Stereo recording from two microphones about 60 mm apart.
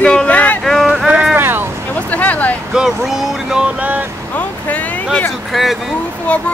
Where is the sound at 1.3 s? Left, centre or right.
Right.